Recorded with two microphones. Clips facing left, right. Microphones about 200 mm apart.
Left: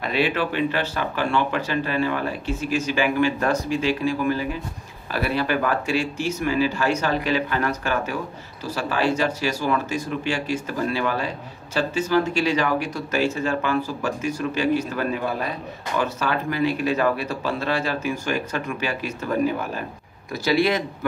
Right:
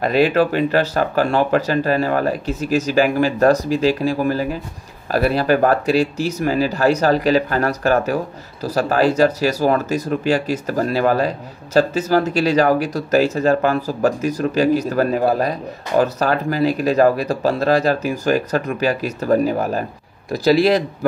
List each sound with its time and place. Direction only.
0.0 s speech: 40° right (ahead or behind)